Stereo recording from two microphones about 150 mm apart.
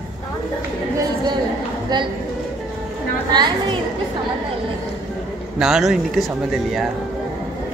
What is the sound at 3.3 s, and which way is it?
Speech, 30° right (ahead or behind).